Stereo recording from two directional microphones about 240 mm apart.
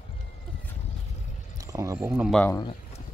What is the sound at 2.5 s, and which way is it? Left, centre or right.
Speech, centre.